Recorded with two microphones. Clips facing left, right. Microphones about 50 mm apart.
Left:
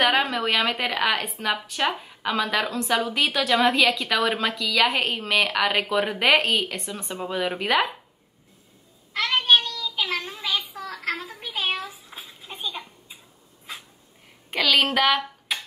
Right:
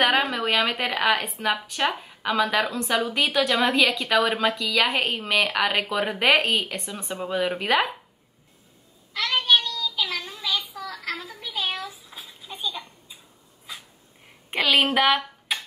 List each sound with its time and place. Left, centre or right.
0.0 s speech: centre
9.1 s child singing: left
11.7 s bathtub: left
12.5 s a sound: left
14.5 s a woman's voice: right